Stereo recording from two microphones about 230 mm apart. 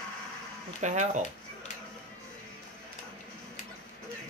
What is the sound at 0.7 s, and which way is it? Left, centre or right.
Speech, right.